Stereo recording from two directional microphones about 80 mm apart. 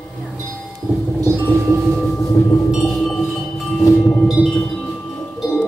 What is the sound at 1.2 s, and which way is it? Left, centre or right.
Music, right.